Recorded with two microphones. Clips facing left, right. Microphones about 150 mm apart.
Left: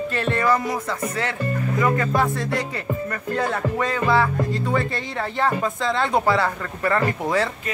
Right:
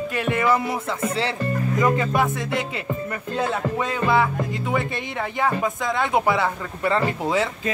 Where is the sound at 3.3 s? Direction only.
15° right (ahead or behind).